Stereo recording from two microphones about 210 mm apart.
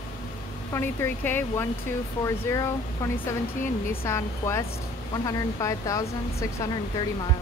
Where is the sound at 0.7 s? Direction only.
10° left (ahead or behind).